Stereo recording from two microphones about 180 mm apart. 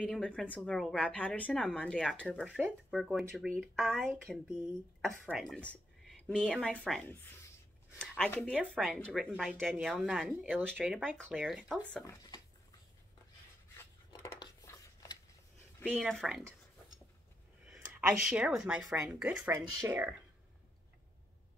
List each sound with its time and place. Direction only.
0.0 s a woman's voice: 5° left (ahead or behind)
2.4 s a woman's voice: 5° right (ahead or behind)
12.1 s speech: 20° left (ahead or behind)
13.7 s a sound: 15° left (ahead or behind)
15.9 s a woman's voice: 5° left (ahead or behind)
17.6 s speech: 5° right (ahead or behind)